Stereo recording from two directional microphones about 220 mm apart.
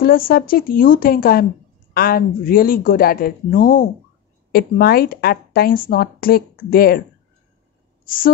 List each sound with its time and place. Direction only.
0.0 s a woman's voice: 40° left (ahead or behind)